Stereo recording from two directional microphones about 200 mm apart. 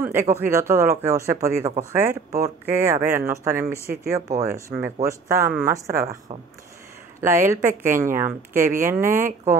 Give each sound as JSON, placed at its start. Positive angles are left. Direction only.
{"t": 0.0, "sound": "speech", "side_deg": -10}